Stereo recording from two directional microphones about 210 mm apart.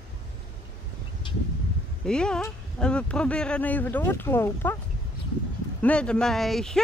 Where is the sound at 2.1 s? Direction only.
5° left (ahead or behind).